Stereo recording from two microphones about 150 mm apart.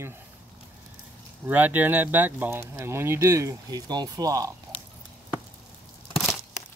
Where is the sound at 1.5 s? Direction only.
10° right (ahead or behind).